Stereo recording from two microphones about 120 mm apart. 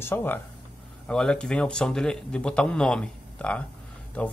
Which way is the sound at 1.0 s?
5° left (ahead or behind).